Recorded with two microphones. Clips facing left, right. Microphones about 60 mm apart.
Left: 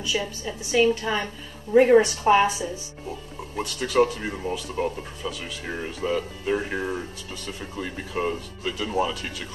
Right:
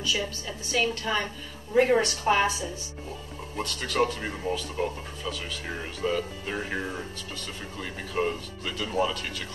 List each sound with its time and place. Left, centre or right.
0.1 s speech: centre
3.5 s speech: centre